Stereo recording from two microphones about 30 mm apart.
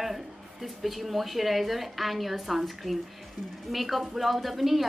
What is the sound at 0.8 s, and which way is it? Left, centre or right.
A woman's voice, centre.